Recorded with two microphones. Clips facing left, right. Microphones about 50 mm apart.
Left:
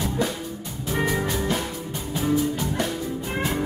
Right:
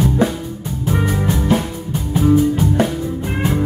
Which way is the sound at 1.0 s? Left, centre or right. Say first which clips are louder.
Right 1 dB; centre.